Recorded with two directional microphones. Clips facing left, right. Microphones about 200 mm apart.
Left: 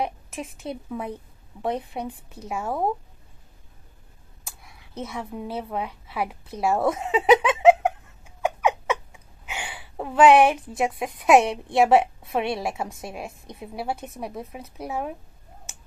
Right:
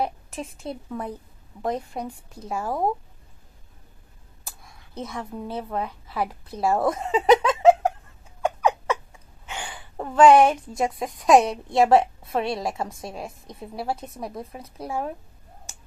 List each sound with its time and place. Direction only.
0.5 s a woman's voice: 30° right (ahead or behind)
0.8 s a woman's voice: 10° left (ahead or behind)
4.9 s a woman's voice: 5° left (ahead or behind)
8.4 s a sound: 5° left (ahead or behind)
10.8 s a woman's voice: 10° left (ahead or behind)